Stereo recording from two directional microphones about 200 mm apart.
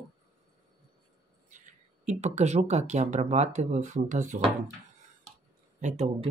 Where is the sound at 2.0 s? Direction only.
35° right (ahead or behind).